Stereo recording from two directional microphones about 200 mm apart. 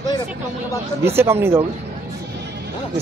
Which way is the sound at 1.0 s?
10° right (ahead or behind).